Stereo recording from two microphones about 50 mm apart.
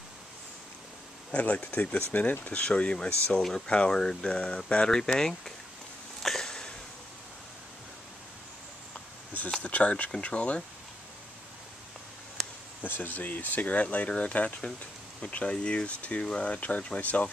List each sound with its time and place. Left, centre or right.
1.3 s speech: left
2.6 s speech: left
6.2 s sniff: centre
9.6 s speech: left
12.8 s speech: left